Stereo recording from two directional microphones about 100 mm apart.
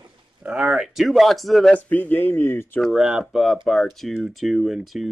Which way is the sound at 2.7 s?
Centre (ahead or behind).